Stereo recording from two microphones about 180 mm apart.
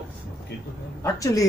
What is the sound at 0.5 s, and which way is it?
Speech, 65° left (ahead or behind).